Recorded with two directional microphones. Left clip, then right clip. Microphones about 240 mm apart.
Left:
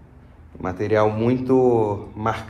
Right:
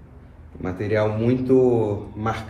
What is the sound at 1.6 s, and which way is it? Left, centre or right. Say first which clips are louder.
Speech: left 3 dB; left.